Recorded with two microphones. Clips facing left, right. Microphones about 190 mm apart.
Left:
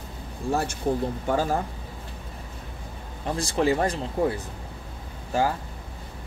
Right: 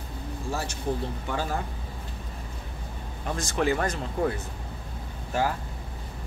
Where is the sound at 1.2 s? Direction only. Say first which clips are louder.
Left 8 dB; 45° left (ahead or behind).